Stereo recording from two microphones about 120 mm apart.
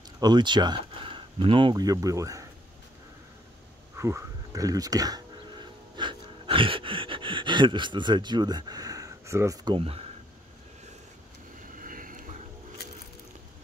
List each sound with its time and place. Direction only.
0.2 s speech: 40° right (ahead or behind)
3.9 s a sound: 25° right (ahead or behind)
9.7 s speech: 50° right (ahead or behind)